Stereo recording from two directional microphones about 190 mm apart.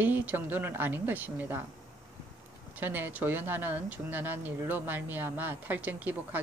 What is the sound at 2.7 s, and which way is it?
Speech, 10° right (ahead or behind).